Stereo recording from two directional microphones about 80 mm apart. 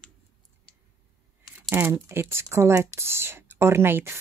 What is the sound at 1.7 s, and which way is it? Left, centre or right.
Speech, right.